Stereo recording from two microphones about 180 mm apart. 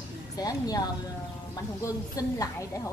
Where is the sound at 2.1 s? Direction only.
20° left (ahead or behind).